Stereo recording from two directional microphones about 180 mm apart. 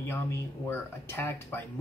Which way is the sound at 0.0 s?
15° left (ahead or behind).